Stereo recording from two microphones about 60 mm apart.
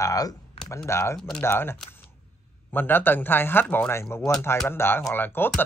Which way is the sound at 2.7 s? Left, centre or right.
Left.